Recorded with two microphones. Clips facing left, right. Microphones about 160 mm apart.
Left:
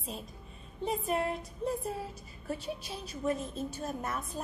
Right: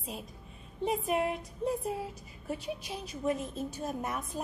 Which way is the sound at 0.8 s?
15° right (ahead or behind).